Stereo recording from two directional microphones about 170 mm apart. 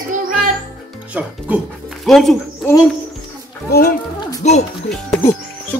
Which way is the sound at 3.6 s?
65° left (ahead or behind).